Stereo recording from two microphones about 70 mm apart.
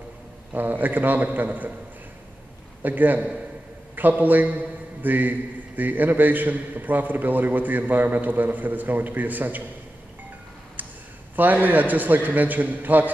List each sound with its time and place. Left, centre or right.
0.5 s a man's voice: right
2.8 s a man's voice: right
11.3 s a man's voice: right